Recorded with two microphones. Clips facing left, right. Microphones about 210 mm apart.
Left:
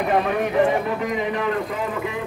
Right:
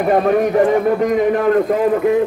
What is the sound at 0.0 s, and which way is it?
A man's voice, 45° right (ahead or behind).